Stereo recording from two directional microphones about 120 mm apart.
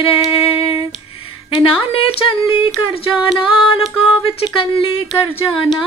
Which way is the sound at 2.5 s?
45° left (ahead or behind).